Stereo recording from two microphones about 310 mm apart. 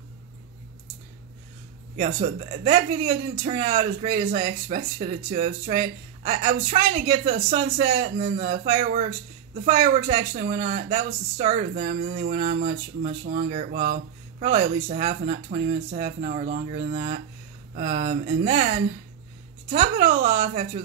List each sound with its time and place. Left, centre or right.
2.0 s speech: right
19.7 s speech: right